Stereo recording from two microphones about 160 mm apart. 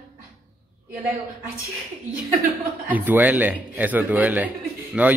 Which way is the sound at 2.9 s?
10° right (ahead or behind).